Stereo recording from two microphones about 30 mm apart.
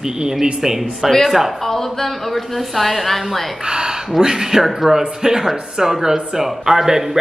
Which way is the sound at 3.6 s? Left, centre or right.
Right.